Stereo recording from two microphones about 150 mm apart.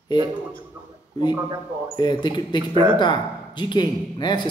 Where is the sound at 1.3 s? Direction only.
30° right (ahead or behind).